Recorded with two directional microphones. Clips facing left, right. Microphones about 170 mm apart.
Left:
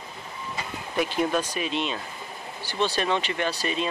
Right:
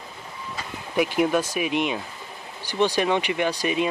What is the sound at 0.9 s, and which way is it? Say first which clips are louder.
Speech: right 4 dB; 10° right (ahead or behind).